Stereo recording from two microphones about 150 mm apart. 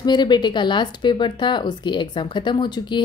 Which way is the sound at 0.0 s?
30° left (ahead or behind).